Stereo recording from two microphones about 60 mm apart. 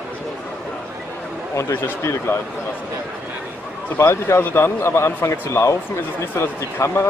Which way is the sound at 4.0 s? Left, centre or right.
Left.